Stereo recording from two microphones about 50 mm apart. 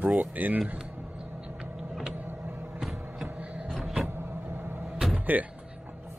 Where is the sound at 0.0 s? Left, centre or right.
Right.